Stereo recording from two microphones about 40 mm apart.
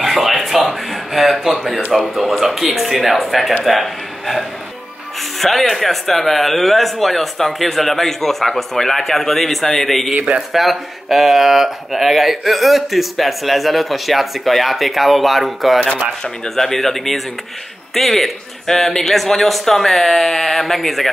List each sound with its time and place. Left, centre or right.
0.0 s a sound: centre
1.9 s a man's voice: centre
10.1 s speech: right
10.5 s speech: centre